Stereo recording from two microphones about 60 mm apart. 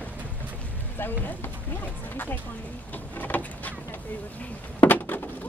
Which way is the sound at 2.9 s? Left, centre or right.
Left.